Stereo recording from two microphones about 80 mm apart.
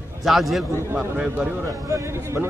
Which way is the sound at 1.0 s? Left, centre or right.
Centre.